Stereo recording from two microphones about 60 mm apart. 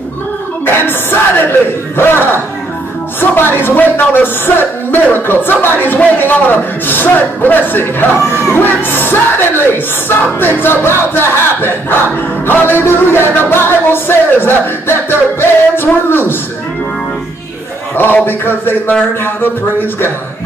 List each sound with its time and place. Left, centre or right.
0.7 s a sound: left
3.2 s a man's voice: left
17.9 s a man's voice: left